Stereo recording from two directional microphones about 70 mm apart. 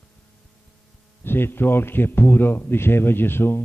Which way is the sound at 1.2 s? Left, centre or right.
Left.